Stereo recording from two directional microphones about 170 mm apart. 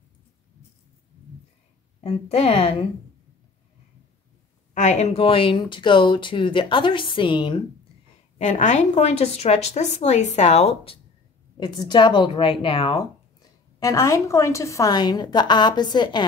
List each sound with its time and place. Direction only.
2.0 s a woman's voice: 35° left (ahead or behind)
4.7 s speech: 40° left (ahead or behind)
8.4 s a woman's voice: 45° left (ahead or behind)
11.6 s speech: 25° left (ahead or behind)